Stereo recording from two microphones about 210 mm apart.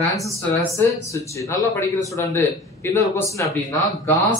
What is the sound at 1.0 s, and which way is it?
Speech, 15° left (ahead or behind).